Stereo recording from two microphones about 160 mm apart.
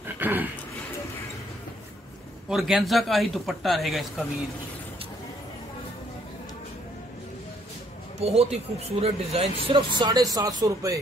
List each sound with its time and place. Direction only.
0.0 s a sound: 10° right (ahead or behind)
2.5 s speech: centre (ahead or behind)
8.2 s speech: 40° right (ahead or behind); by 11.0 s 20° right (ahead or behind)